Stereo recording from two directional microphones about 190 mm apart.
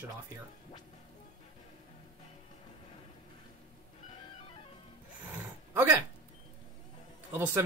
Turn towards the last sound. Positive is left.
turn(degrees=-10)  # may be behind; listen again after turning